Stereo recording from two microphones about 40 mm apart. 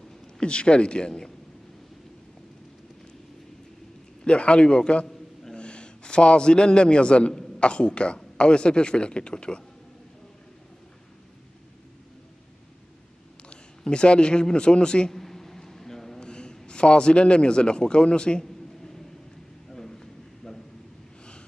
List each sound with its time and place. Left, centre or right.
0.4 s speech: left
4.2 s a man's voice: left
13.5 s a man's voice: left
15.1 s a sound: centre
16.2 s a man's voice: left
19.7 s a sound: centre